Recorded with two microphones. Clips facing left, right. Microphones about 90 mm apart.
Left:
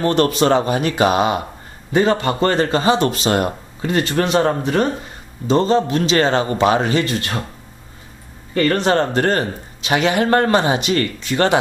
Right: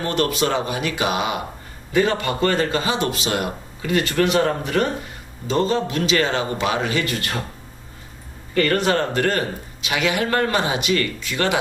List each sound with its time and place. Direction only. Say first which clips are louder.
0.0 s a man's voice: left 5 dB; 35° left (ahead or behind)
8.5 s a man's voice: left 3 dB; 25° left (ahead or behind)